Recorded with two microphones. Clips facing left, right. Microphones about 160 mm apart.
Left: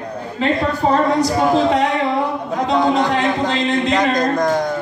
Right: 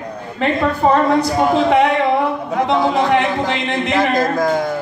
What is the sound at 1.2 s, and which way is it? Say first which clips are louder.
Speech: even; 60° right (ahead or behind).